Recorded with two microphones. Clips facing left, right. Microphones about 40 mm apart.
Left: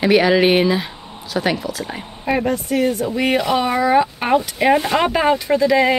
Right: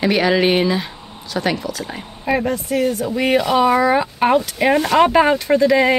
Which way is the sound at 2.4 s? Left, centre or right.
Centre.